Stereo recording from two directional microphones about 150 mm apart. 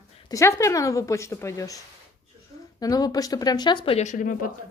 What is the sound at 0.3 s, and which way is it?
Speech, 20° left (ahead or behind).